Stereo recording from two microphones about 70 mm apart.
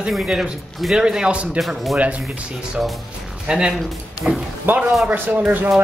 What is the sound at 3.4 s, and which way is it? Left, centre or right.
Speech, centre.